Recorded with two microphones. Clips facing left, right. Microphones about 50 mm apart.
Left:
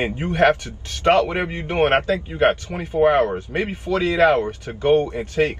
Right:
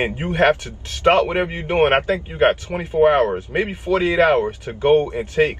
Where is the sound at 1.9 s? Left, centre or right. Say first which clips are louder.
Right 1 dB; right.